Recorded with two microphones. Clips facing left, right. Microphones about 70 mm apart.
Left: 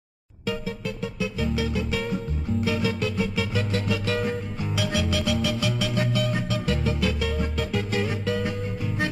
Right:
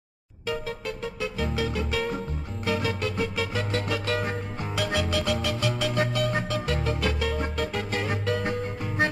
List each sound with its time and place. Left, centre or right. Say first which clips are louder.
0.8 s music: left 1 dB; right